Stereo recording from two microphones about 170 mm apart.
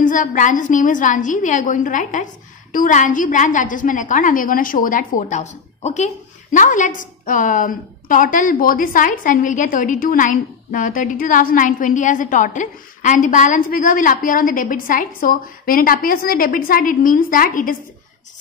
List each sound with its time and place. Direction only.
0.0 s a woman's voice: 50° left (ahead or behind)